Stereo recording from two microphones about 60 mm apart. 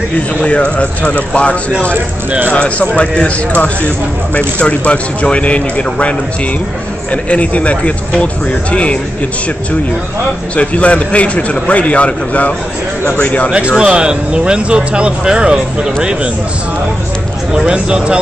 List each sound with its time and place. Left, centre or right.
0.4 s a man's voice: left
10.5 s a man's voice: left
13.7 s speech: centre
17.6 s speech: centre